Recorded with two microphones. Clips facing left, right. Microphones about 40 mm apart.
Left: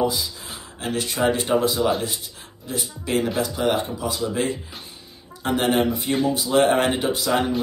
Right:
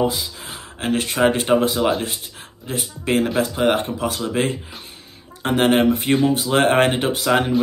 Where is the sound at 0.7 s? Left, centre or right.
Right.